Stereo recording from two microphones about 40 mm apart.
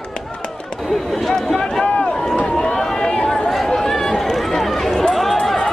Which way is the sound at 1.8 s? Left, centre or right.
Left.